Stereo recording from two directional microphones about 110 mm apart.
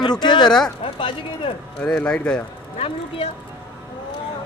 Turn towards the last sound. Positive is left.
turn(degrees=65)  # may be behind; listen again after turning